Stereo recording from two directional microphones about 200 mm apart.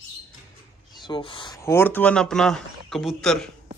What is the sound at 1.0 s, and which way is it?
Speech, 25° left (ahead or behind).